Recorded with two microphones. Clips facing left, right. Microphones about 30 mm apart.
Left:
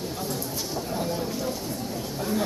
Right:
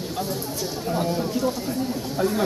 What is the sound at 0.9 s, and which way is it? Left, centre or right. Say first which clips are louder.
Speech: right 7 dB; centre.